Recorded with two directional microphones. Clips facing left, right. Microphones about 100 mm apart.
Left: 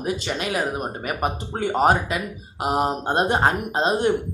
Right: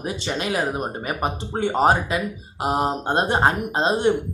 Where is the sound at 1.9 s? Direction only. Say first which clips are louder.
Right 1 dB; 25° right (ahead or behind).